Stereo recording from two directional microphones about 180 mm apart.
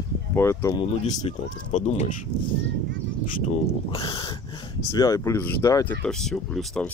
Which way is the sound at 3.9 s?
30° left (ahead or behind).